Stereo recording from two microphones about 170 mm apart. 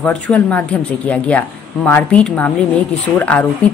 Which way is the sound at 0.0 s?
10° left (ahead or behind).